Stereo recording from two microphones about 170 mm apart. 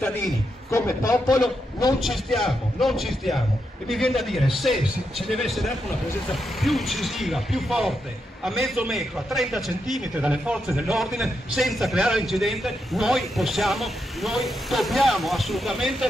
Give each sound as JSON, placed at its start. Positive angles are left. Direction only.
{"t": 0.7, "sound": "a man's voice", "side_deg": 15}
{"t": 2.0, "sound": "a man's voice", "side_deg": 0}